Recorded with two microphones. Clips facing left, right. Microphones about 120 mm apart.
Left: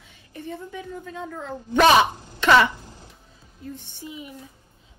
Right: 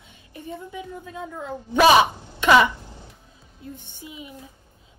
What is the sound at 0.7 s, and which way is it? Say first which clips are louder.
Speech: even; 15° right (ahead or behind).